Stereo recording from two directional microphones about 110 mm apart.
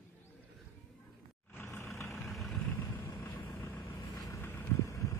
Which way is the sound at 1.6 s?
25° left (ahead or behind).